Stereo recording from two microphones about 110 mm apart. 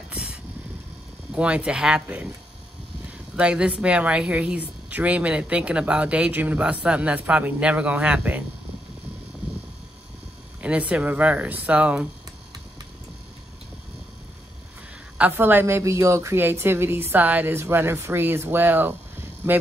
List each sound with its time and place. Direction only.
0.1 s vehicle: 10° right (ahead or behind)
1.3 s speech: 10° right (ahead or behind)
10.6 s speech: 10° right (ahead or behind)
15.1 s a woman's voice: 15° right (ahead or behind)